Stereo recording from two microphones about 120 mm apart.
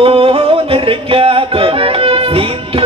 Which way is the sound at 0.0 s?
50° right (ahead or behind).